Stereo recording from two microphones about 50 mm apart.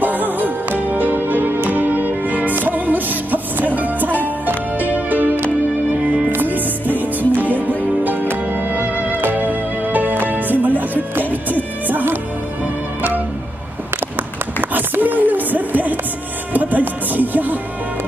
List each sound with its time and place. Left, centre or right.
0.0 s music: right
14.6 s a sound: right
16.5 s music: right